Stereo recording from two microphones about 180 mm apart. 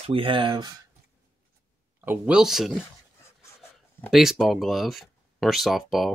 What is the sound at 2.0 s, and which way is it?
Speech, 5° right (ahead or behind).